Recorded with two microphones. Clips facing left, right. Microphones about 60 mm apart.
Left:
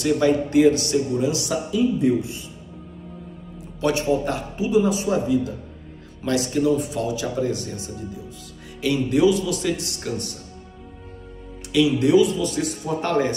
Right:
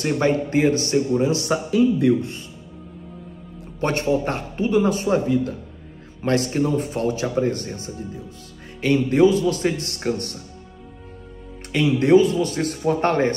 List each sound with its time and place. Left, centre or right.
0.0 s speech: right
1.7 s a man's voice: right
3.8 s a man's voice: right
11.7 s speech: right